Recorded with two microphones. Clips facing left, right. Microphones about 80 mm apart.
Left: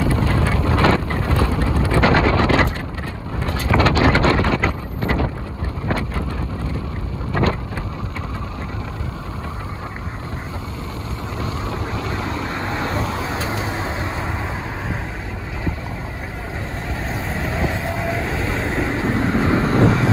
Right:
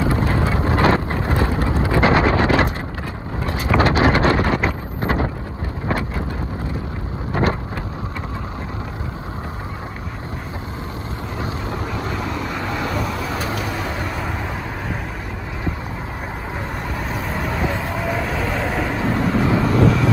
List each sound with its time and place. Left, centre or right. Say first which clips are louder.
0.0 s vehicle: even; right
4.6 s wind noise: even; right
12.3 s vehicle: even; left
17.3 s vehicle: even; left
19.3 s a sound: even; left